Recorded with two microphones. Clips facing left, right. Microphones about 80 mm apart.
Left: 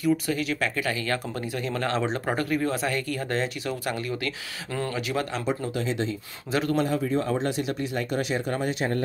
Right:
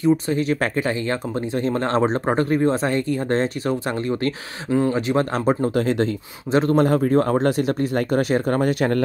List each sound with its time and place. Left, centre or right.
0.0 s speech: right
4.6 s speech: centre
4.9 s speech: right
6.5 s speech: right
6.8 s speech: right